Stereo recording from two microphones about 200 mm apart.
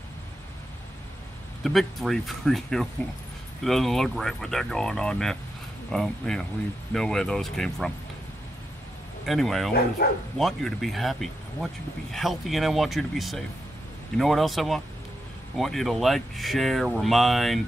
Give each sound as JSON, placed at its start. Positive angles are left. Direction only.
{"t": 1.6, "sound": "speech", "side_deg": 0}
{"t": 9.2, "sound": "speech", "side_deg": 0}
{"t": 10.0, "sound": "speech", "side_deg": 55}
{"t": 10.3, "sound": "speech", "side_deg": 0}